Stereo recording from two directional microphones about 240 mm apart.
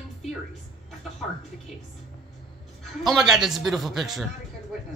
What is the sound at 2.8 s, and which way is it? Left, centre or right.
A man's voice, centre.